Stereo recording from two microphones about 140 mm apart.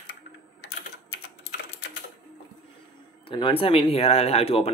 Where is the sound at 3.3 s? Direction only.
35° left (ahead or behind).